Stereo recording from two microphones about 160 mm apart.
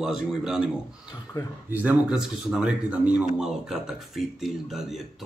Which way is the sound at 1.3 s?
25° left (ahead or behind).